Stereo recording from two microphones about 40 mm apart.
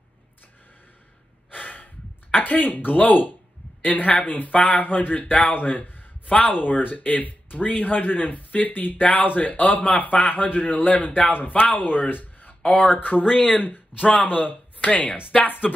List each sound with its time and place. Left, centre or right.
1.5 s breathing: left
2.4 s speech: left
5.2 s speech: left
5.5 s a sound: left
6.5 s speech: left
12.6 s speech: left